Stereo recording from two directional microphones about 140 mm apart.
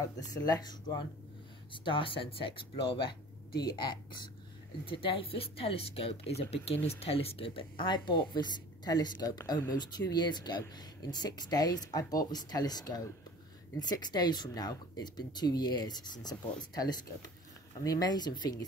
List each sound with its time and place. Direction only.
0.3 s speech: 30° left (ahead or behind)